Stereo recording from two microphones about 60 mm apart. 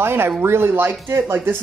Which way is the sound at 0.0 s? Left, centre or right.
Right.